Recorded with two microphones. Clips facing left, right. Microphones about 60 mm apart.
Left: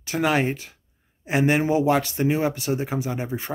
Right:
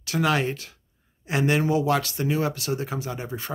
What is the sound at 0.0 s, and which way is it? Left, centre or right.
Speech, left.